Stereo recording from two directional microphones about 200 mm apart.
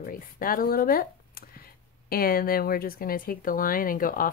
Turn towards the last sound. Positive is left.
turn(degrees=45)  # may be behind; listen again after turning